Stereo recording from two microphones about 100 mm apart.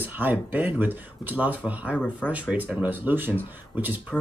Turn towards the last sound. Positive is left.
turn(degrees=-20)  # may be behind; listen again after turning